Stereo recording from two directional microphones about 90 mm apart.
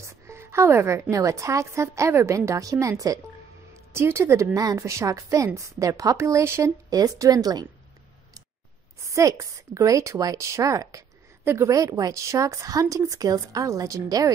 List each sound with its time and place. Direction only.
0.0 s music: 30° right (ahead or behind)
1.1 s speech: 35° right (ahead or behind)
3.9 s speech: 30° right (ahead or behind)
6.9 s a woman's voice: 45° right (ahead or behind)
9.0 s speech: 40° right (ahead or behind)